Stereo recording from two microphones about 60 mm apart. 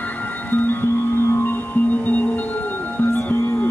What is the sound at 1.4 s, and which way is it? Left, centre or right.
Music, left.